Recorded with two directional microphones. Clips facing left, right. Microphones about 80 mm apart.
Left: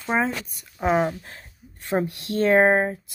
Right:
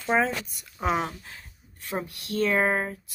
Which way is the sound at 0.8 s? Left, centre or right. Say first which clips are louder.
Left 5 dB; left.